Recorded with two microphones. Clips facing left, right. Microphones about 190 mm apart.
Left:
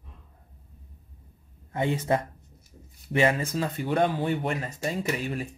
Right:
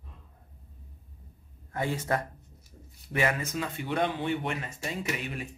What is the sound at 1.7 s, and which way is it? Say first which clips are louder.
Speech: left 4 dB; 20° left (ahead or behind).